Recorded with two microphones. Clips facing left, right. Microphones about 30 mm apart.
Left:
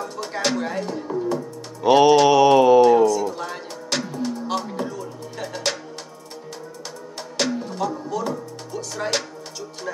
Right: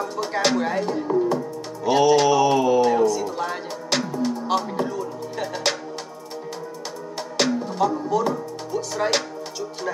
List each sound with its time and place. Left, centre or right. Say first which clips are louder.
0.0 s speech: right 3 dB; centre
1.8 s music: left 4 dB; centre
2.2 s mantra: left 4 dB; left
2.8 s music: left 4 dB; centre
7.4 s music: right 3 dB; centre